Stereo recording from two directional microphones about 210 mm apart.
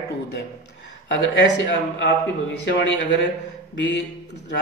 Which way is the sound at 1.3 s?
60° left (ahead or behind).